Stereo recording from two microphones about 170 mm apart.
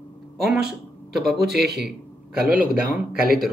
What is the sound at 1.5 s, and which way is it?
Speech, 70° right (ahead or behind).